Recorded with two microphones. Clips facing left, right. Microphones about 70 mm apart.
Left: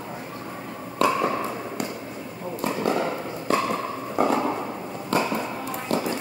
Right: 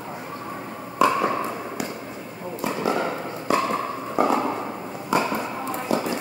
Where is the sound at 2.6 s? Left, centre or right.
Centre.